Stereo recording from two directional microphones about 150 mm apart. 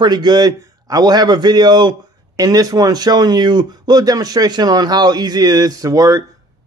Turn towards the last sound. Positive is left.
turn(degrees=-25)  # may be behind; listen again after turning